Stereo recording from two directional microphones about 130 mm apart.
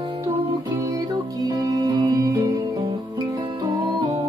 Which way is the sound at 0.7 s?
25° right (ahead or behind).